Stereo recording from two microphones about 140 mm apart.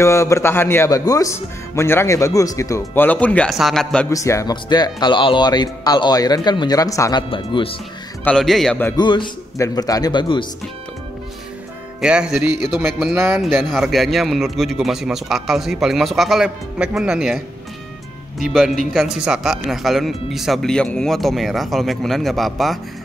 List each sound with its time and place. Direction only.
0.0 s speech: 20° left (ahead or behind); by 4.1 s 5° left (ahead or behind)
4.1 s speech: 20° left (ahead or behind); by 7.7 s 35° left (ahead or behind)
8.2 s a man's voice: 5° left (ahead or behind)
8.9 s a man's voice: 35° left (ahead or behind)
12.0 s a man's voice: 5° right (ahead or behind)
18.4 s a man's voice: centre (ahead or behind)